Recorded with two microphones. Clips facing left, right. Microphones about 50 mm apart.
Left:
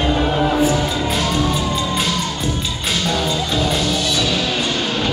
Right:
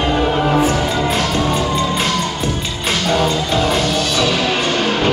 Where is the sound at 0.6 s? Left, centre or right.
Right.